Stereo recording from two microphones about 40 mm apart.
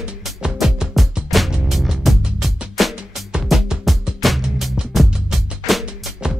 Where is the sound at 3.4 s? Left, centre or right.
Centre.